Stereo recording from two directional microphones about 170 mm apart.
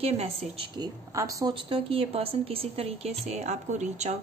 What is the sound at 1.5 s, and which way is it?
Speech, 30° right (ahead or behind).